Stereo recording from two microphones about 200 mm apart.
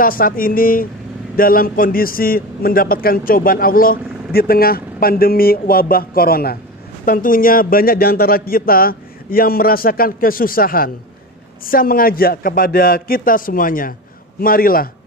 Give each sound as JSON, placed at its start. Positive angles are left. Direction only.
{"t": 0.0, "sound": "a man's voice", "side_deg": 45}